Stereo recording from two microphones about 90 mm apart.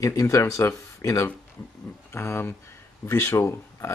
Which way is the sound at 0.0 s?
35° left (ahead or behind).